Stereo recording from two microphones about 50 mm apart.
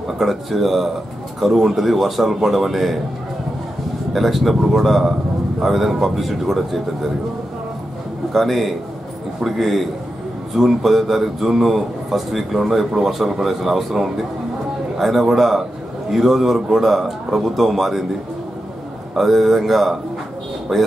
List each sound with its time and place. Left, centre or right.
0.2 s a man's voice: centre
4.1 s a man's voice: centre
8.3 s a man's voice: centre
19.1 s a man's voice: centre